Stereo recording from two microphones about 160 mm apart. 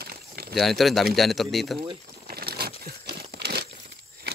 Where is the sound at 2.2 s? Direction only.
75° right (ahead or behind).